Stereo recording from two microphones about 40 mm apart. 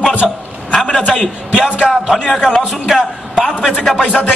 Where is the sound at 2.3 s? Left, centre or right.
Centre.